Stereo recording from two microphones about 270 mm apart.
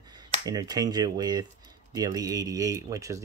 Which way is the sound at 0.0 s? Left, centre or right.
Centre.